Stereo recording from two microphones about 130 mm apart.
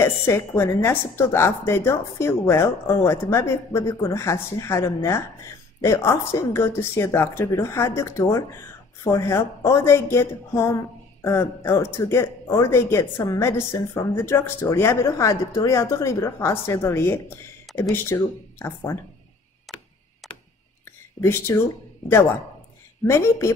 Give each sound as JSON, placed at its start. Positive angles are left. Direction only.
{"t": 0.0, "sound": "a woman's voice", "side_deg": 20}
{"t": 21.2, "sound": "speech", "side_deg": 15}
{"t": 23.0, "sound": "a woman's voice", "side_deg": 20}